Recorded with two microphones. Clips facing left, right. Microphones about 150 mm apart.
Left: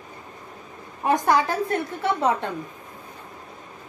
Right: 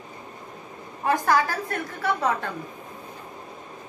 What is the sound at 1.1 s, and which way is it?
A woman's voice, 20° left (ahead or behind).